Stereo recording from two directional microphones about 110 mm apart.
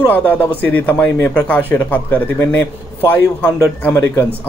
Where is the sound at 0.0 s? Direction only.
15° left (ahead or behind).